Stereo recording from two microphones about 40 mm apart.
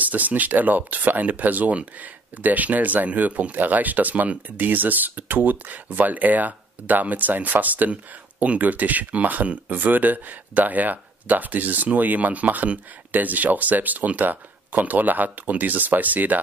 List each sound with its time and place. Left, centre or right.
0.0 s speech: right